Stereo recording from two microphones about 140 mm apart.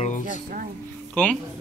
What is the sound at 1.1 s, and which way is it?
Speech, 10° left (ahead or behind).